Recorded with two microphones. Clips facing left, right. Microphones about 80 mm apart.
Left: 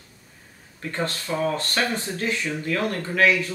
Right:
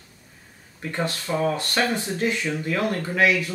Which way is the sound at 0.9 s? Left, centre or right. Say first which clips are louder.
Right 1 dB; centre.